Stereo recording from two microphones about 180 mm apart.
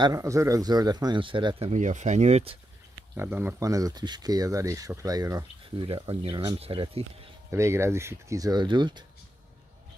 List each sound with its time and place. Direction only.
0.0 s speech: 20° right (ahead or behind)
1.7 s speech: 40° right (ahead or behind)
3.2 s speech: 10° right (ahead or behind)
5.9 s speech: 30° right (ahead or behind)
7.5 s speech: 15° right (ahead or behind)